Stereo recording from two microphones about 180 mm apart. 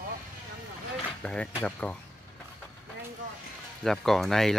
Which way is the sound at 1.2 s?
5° left (ahead or behind).